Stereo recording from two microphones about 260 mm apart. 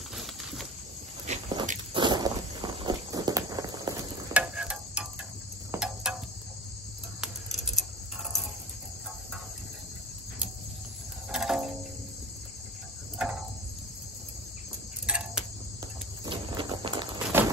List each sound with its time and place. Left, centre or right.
0.1 s a sound: centre
1.2 s walk: right; by 5.0 s centre
5.7 s cricket: centre
7.2 s a sound: centre
11.2 s music: centre
15.0 s cricket: centre
16.3 s clip-clop: centre